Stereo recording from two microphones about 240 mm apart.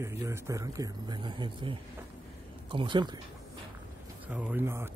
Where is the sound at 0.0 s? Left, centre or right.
Centre.